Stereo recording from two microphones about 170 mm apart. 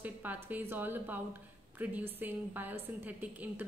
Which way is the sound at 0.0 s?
10° right (ahead or behind).